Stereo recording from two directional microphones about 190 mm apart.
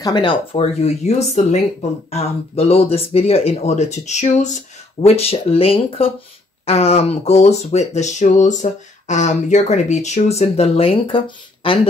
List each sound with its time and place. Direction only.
0.0 s speech: 25° left (ahead or behind)